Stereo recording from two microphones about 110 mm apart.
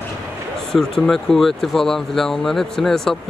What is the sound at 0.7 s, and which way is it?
Speech, 5° left (ahead or behind).